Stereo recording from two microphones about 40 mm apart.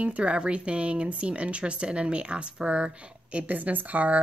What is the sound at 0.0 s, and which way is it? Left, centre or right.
Speech, right.